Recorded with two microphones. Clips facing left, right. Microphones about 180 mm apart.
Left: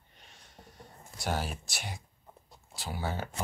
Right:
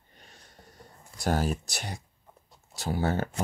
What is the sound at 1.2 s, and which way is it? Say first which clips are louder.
Speech: right 6 dB; 45° right (ahead or behind).